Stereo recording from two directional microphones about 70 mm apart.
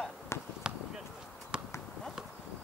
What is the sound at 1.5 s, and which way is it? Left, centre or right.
Clip-clop, centre.